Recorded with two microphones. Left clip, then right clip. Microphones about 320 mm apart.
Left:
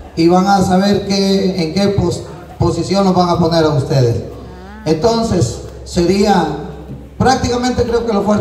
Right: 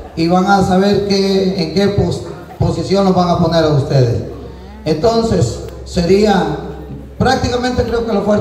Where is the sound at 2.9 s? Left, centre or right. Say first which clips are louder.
Right 1 dB; centre.